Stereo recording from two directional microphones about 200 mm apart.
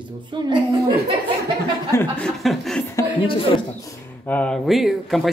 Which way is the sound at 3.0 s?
25° left (ahead or behind).